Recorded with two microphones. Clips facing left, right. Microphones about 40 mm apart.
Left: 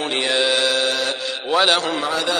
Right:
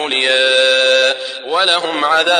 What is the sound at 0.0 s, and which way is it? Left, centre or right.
Mantra, right.